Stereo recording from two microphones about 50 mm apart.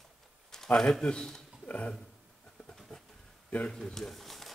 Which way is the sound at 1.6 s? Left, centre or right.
Left.